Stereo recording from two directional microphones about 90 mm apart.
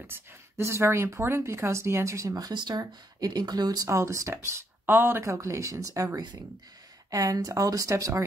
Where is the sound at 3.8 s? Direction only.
30° right (ahead or behind).